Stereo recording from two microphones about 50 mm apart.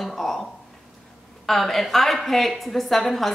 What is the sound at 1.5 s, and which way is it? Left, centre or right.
A woman's voice, centre.